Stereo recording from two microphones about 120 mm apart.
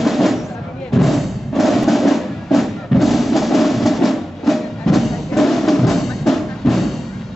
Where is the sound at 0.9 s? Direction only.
Centre (ahead or behind).